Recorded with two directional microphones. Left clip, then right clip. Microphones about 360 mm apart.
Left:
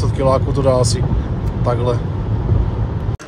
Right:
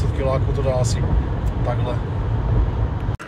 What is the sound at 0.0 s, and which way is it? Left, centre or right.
Speech, left.